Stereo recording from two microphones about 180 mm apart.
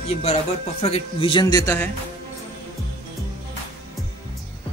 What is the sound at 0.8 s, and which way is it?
Speech, 30° left (ahead or behind).